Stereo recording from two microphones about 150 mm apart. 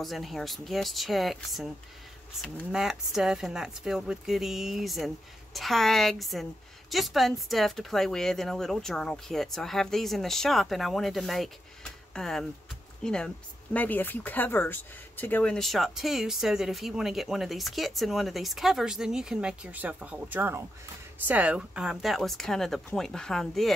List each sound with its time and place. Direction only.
0.0 s speech: centre (ahead or behind)
2.7 s speech: 5° right (ahead or behind)